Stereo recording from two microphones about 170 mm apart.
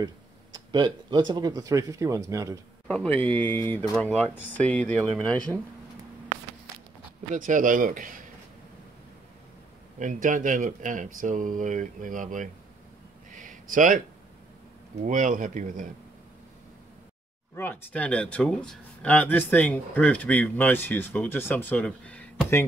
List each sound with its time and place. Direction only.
0.0 s speech: 25° right (ahead or behind)
2.9 s speech: 10° left (ahead or behind)
7.3 s speech: 50° right (ahead or behind)
9.9 s speech: 50° right (ahead or behind)
13.3 s a sound: 50° right (ahead or behind)
15.0 s speech: 50° right (ahead or behind)
17.6 s speech: 10° left (ahead or behind)